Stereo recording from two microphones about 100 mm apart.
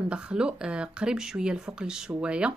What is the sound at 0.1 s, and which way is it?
Speech, 10° right (ahead or behind).